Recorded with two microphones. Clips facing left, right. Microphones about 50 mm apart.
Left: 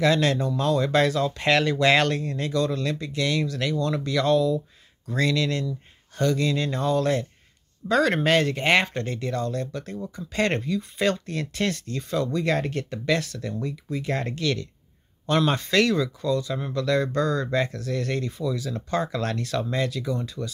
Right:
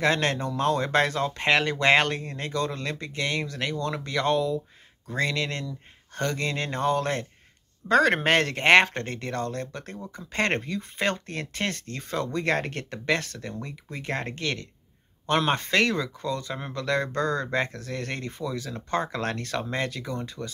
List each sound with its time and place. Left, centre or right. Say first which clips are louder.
0.0 s speech: left 3 dB; right